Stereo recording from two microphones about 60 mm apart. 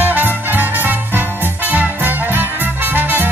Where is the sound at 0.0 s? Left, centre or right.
Right.